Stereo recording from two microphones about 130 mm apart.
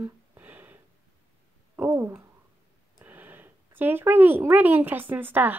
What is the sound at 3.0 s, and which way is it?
Speech, 15° right (ahead or behind).